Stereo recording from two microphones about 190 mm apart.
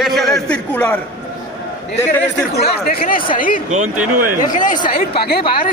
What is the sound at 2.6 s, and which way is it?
Speech, 50° left (ahead or behind).